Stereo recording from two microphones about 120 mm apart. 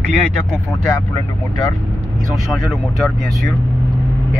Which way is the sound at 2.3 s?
Centre (ahead or behind).